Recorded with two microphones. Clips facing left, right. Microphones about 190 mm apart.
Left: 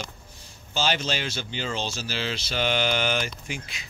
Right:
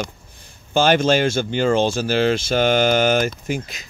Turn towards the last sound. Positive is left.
turn(degrees=-45)  # may be behind; listen again after turning